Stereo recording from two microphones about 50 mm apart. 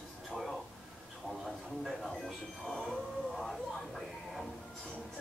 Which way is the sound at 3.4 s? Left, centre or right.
Centre.